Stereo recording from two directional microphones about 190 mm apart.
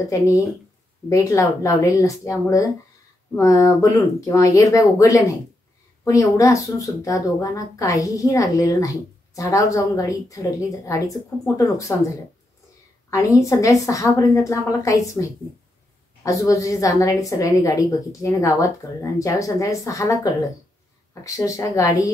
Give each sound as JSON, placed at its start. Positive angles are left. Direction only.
{"t": 1.0, "sound": "a woman's voice", "side_deg": 15}
{"t": 13.1, "sound": "a woman's voice", "side_deg": 15}